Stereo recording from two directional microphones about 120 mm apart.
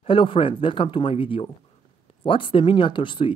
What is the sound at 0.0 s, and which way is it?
Speech, 45° left (ahead or behind).